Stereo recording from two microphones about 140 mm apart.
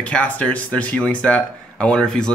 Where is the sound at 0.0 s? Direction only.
10° left (ahead or behind).